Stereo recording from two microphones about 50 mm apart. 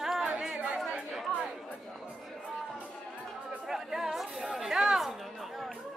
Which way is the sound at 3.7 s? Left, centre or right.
Centre.